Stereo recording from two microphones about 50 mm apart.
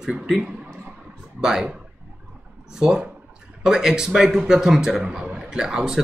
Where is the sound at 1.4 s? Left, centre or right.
Centre.